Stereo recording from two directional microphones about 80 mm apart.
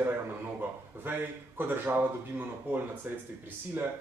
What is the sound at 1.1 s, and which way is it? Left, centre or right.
Speech, right.